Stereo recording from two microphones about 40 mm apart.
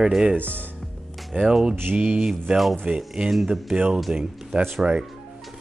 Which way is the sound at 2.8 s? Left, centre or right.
Right.